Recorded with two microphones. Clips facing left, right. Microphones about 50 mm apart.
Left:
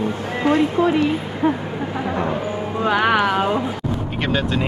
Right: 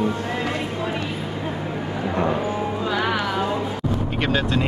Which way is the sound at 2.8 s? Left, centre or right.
Left.